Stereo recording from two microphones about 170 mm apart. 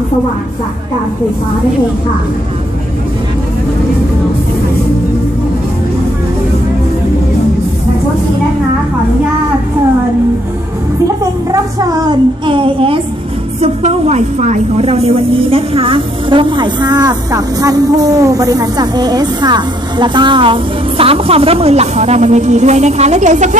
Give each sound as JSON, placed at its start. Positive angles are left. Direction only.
{"t": 11.9, "sound": "a woman's voice", "side_deg": -25}